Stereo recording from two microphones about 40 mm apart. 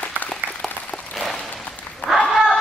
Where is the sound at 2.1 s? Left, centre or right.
Centre.